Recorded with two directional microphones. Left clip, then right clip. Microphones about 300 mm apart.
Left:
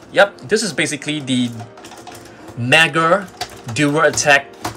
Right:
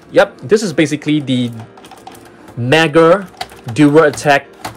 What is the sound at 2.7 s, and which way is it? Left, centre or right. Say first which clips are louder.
Speech: right 4 dB; centre.